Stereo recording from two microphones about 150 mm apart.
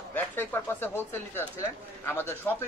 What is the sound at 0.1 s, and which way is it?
Speech, 10° left (ahead or behind).